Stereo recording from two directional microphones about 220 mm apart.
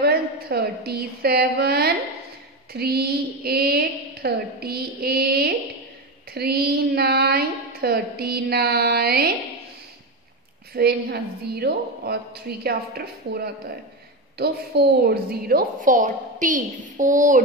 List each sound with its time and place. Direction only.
0.0 s a woman's voice: 45° right (ahead or behind)
10.7 s a woman's voice: 45° right (ahead or behind)